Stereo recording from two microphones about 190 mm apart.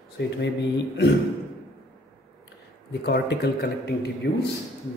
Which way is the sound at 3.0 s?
60° left (ahead or behind).